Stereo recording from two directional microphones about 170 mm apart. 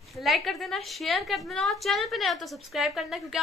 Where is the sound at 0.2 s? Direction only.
Centre (ahead or behind).